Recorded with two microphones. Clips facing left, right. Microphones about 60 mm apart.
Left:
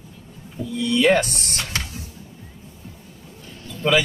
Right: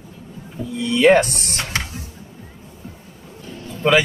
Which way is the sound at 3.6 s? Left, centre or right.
Right.